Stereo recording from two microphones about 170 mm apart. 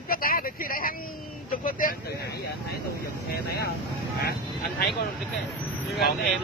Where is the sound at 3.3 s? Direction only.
70° left (ahead or behind).